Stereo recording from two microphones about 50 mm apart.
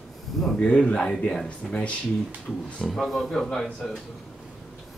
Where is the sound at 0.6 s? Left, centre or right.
Left.